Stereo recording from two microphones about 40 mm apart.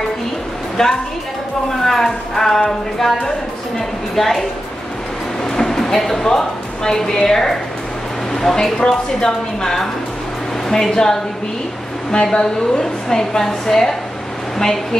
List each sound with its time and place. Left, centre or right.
0.8 s speech: centre
5.4 s a sound: centre
7.2 s a woman's voice: centre